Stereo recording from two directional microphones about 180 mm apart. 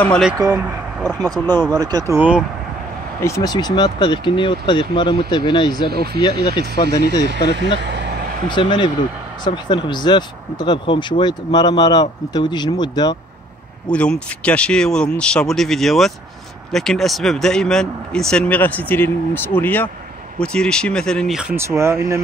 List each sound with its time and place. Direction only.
0.5 s speech: 10° right (ahead or behind)
1.4 s speech: 10° left (ahead or behind)
1.7 s speech: 20° right (ahead or behind)
3.2 s speech: 15° left (ahead or behind)
5.9 s speech: 60° right (ahead or behind)
6.2 s speech: 25° left (ahead or behind)
7.2 s speech: 75° right (ahead or behind)
7.8 s vehicle: 75° right (ahead or behind)
8.5 s speech: 25° left (ahead or behind)
13.8 s speech: 5° left (ahead or behind)
21.5 s speech: 15° right (ahead or behind)